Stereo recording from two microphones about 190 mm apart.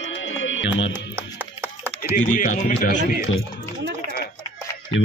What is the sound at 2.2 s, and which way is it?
Speech, 45° left (ahead or behind).